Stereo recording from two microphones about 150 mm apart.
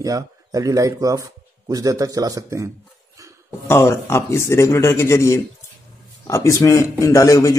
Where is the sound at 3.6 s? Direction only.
20° left (ahead or behind).